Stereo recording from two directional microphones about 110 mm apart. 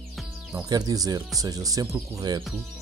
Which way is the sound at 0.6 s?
35° right (ahead or behind).